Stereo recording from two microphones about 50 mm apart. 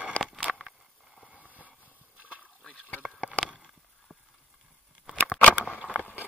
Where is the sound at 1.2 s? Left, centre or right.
Right.